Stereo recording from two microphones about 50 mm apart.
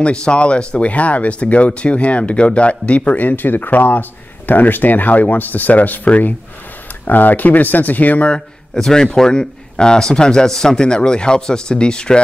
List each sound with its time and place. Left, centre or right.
0.0 s speech: centre
8.7 s a man's voice: centre